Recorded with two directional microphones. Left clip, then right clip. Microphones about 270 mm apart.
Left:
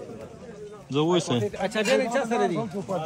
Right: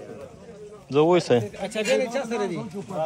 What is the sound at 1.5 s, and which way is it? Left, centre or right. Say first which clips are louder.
Speech: even; centre.